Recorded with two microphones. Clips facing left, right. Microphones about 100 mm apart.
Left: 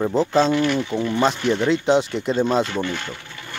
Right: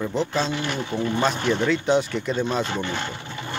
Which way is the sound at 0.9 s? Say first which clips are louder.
Left 3 dB; 25° left (ahead or behind).